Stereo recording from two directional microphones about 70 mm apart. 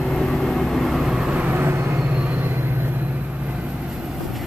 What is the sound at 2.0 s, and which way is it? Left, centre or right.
Train, centre.